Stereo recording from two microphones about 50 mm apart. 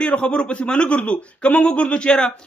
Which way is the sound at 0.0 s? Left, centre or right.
Left.